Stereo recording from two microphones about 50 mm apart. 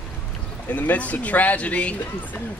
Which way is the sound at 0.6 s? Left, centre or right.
Left.